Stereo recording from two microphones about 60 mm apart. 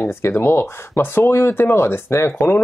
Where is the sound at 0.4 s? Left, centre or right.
Left.